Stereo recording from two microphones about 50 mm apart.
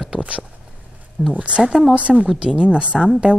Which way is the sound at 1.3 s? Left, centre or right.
Right.